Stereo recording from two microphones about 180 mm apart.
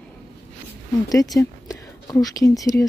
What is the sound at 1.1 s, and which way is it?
Speech, 20° left (ahead or behind).